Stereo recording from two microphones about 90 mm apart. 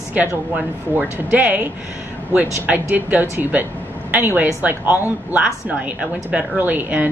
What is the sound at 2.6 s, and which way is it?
A woman's voice, 15° right (ahead or behind).